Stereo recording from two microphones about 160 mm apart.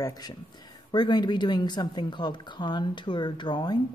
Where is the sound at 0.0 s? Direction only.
25° left (ahead or behind).